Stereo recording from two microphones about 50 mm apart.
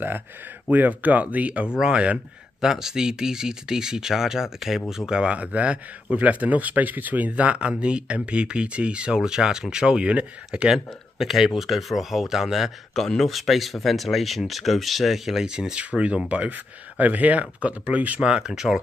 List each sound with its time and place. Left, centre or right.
0.7 s speech: right
10.7 s speech: centre
12.9 s speech: centre; by 18.2 s right
18.2 s speech: centre